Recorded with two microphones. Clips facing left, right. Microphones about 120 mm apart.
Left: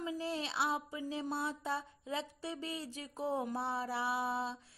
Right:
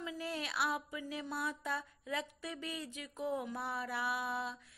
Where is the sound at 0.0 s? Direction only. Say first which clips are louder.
Left 3 dB; 30° left (ahead or behind).